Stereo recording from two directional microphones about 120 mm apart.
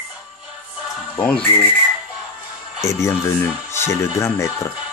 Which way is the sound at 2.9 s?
25° left (ahead or behind).